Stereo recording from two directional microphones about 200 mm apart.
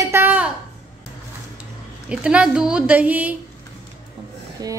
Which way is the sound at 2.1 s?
5° right (ahead or behind).